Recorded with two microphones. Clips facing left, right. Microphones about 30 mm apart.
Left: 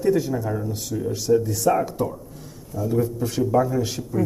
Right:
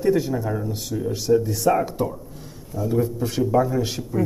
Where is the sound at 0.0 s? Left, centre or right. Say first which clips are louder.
Even; right.